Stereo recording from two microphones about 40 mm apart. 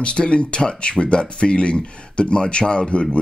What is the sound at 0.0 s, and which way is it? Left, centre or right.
Speech, left.